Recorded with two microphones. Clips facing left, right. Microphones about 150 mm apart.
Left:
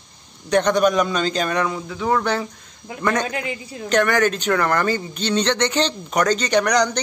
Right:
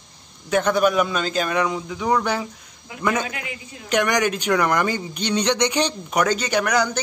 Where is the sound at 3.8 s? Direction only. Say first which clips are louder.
Left 2 dB; 15° right (ahead or behind).